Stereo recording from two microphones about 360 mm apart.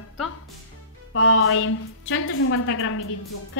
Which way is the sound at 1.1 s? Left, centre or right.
Left.